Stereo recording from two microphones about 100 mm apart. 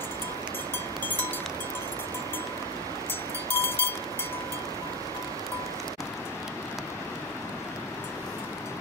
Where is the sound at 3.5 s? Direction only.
25° left (ahead or behind).